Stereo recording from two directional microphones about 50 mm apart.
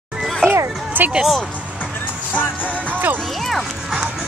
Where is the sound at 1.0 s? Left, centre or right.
Right.